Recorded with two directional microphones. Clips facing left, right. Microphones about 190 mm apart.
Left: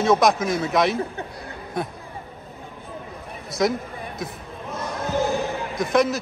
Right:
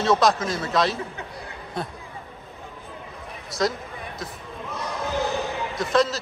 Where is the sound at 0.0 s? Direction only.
20° left (ahead or behind).